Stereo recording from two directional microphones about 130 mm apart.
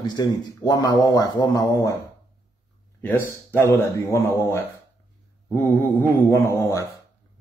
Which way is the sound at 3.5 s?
20° left (ahead or behind).